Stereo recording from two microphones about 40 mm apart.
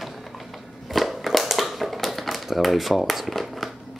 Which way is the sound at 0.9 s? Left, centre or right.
Centre.